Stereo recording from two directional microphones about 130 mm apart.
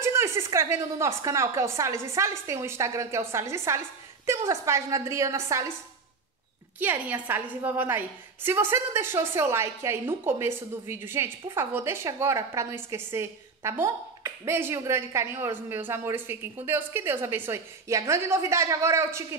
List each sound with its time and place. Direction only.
0.0 s a woman's voice: 20° right (ahead or behind)
6.8 s a woman's voice: 15° right (ahead or behind)